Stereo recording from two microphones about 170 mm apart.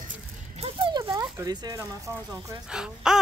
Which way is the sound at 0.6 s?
30° right (ahead or behind).